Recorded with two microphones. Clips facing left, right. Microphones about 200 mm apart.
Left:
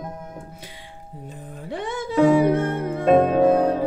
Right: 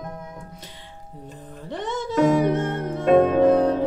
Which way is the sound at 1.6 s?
10° left (ahead or behind).